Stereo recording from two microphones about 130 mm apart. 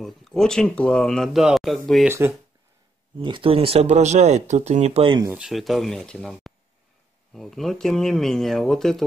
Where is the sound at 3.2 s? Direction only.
40° right (ahead or behind); by 5.0 s 60° right (ahead or behind).